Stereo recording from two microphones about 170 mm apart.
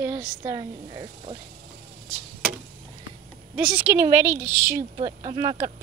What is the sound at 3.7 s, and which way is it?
A woman's voice, 10° right (ahead or behind).